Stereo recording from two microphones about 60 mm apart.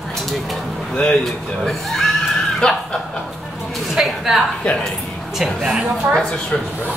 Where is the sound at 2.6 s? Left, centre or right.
Centre.